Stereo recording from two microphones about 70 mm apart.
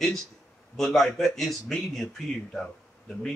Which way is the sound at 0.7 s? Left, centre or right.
Centre.